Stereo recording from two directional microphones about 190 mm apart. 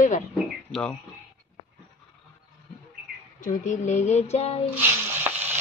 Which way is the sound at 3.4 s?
40° left (ahead or behind).